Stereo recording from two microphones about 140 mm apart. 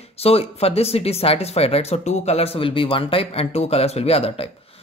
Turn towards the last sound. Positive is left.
turn(degrees=45)  # may be behind; listen again after turning